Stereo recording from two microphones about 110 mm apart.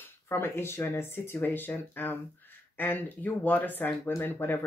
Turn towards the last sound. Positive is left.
turn(degrees=20)  # may be behind; listen again after turning